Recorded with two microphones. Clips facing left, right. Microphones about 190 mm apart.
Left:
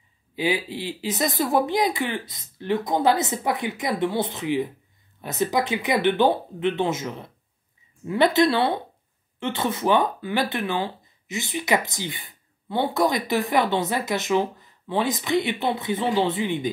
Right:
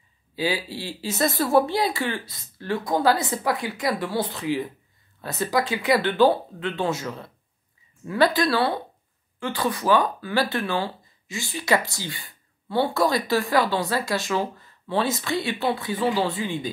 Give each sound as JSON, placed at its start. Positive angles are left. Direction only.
{"t": 0.4, "sound": "speech", "side_deg": 20}